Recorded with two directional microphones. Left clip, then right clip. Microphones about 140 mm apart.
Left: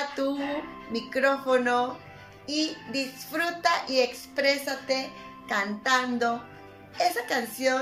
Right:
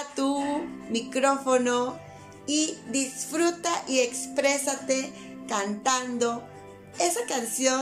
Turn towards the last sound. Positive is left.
turn(degrees=-20)  # may be behind; listen again after turning